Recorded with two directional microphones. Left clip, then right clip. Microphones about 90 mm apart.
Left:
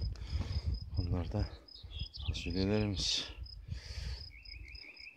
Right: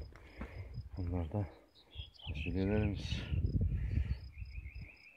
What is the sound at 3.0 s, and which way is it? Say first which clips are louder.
Speech: left 11 dB; 15° left (ahead or behind).